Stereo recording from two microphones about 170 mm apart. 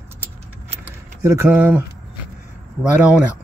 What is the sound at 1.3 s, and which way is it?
Speech, 10° right (ahead or behind).